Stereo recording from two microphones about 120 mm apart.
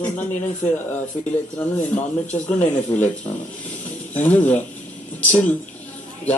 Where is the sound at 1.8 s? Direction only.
70° left (ahead or behind).